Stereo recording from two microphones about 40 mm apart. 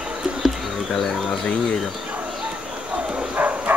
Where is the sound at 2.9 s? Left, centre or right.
Right.